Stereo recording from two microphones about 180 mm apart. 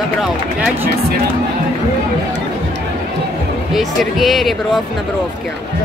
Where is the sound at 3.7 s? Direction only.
Centre (ahead or behind).